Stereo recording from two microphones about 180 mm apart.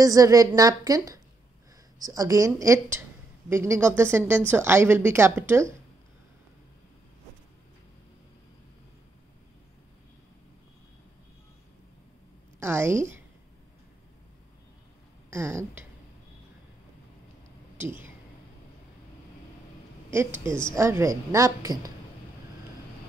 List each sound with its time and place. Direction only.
0.0 s a woman's voice: 20° right (ahead or behind)
12.5 s a woman's voice: 15° right (ahead or behind)
15.2 s speech: 15° right (ahead or behind)
20.1 s a woman's voice: 15° right (ahead or behind)